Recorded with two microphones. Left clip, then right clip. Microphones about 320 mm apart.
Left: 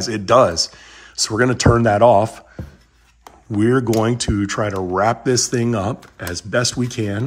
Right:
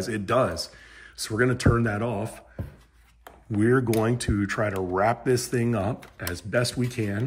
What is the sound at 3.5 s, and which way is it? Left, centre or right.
Speech, centre.